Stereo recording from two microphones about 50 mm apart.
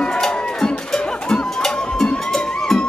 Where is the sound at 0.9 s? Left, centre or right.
Centre.